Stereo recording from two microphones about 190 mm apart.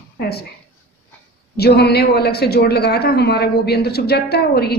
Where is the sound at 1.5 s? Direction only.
60° left (ahead or behind).